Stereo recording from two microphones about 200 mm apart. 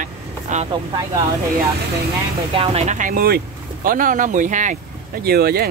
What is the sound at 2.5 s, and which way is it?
Speech, 30° right (ahead or behind).